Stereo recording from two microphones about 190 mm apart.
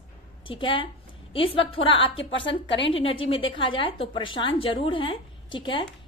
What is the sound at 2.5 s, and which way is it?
Speech, 70° left (ahead or behind).